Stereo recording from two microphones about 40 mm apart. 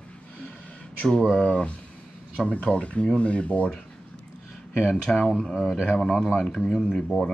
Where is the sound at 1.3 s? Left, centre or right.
Left.